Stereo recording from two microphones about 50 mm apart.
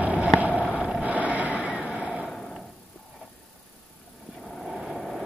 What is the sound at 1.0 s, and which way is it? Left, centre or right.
Vehicle, right.